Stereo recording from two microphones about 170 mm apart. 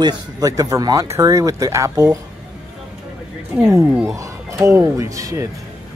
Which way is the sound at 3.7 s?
20° right (ahead or behind).